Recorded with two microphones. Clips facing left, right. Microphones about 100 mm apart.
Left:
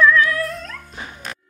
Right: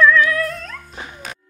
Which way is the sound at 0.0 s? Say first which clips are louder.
Right 1 dB; centre (ahead or behind).